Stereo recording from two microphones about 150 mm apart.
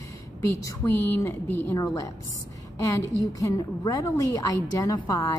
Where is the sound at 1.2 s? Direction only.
20° left (ahead or behind).